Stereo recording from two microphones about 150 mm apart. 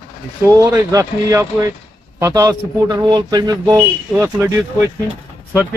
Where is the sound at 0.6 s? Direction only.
15° right (ahead or behind).